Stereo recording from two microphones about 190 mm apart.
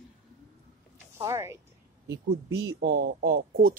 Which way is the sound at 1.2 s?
15° right (ahead or behind).